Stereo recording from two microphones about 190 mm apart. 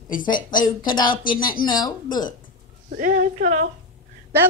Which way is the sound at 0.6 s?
20° left (ahead or behind).